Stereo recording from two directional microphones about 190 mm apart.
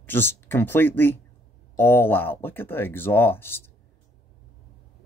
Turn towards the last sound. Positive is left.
turn(degrees=10)  # may be behind; listen again after turning